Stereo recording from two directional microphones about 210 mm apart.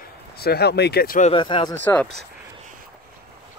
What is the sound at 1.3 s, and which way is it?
Speech, 25° left (ahead or behind).